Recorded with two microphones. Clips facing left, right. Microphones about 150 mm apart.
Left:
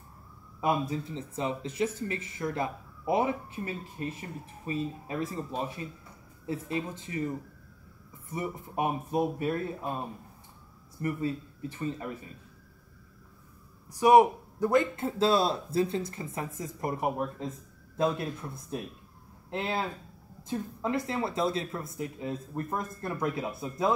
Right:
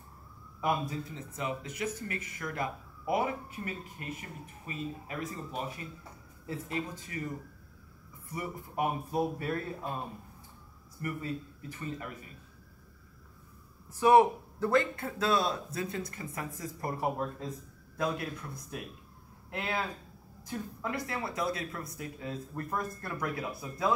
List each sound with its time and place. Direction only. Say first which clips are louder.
0.6 s speech: left 3 dB; 25° left (ahead or behind)
8.3 s speech: left 4 dB; 20° left (ahead or behind)
11.0 s speech: left 5 dB; 25° left (ahead or behind)
13.8 s speech: left 2 dB; 15° left (ahead or behind)